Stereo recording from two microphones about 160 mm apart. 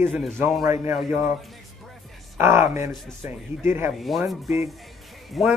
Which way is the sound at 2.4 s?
15° right (ahead or behind).